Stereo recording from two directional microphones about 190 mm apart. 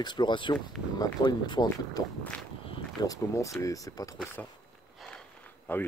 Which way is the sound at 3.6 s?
15° left (ahead or behind).